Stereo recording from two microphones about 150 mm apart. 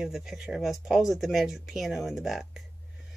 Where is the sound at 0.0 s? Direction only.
5° right (ahead or behind).